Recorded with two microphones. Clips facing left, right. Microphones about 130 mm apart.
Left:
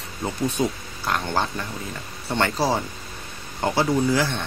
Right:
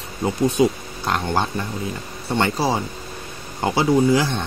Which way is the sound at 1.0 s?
25° right (ahead or behind).